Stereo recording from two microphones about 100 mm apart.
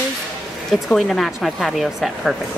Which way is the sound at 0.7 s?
Centre (ahead or behind).